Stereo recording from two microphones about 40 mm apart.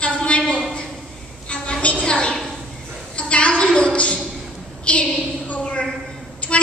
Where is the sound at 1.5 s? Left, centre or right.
Left.